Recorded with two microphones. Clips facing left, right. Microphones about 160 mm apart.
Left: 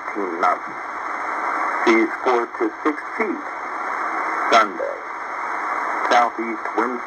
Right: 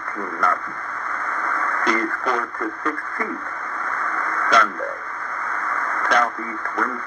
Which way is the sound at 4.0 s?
30° left (ahead or behind).